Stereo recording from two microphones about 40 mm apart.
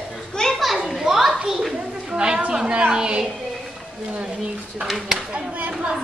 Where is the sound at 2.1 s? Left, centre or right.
Right.